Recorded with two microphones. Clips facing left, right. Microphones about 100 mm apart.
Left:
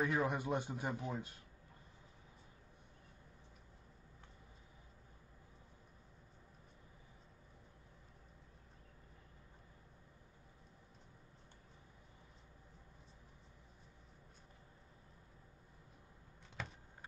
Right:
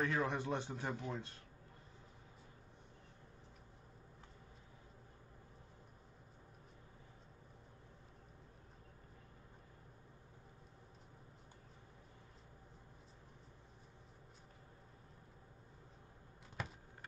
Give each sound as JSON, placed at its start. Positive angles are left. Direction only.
{"t": 0.0, "sound": "a man's voice", "side_deg": 10}